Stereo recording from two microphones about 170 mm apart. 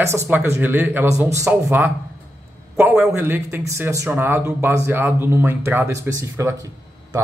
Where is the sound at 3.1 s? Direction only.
15° right (ahead or behind).